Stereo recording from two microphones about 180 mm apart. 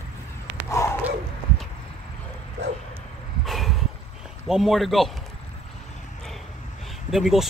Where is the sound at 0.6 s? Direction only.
15° left (ahead or behind).